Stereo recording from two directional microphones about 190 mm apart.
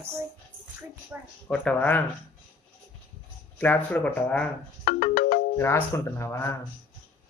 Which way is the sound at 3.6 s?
10° left (ahead or behind).